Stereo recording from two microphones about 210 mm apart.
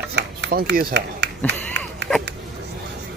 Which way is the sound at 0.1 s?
50° right (ahead or behind).